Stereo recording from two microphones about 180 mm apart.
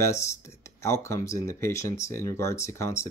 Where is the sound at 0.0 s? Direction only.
15° left (ahead or behind).